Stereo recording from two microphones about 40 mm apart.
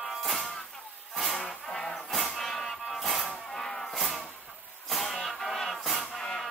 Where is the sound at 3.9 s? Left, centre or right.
Centre.